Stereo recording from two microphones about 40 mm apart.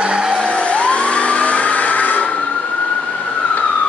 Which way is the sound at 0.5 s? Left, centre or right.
Left.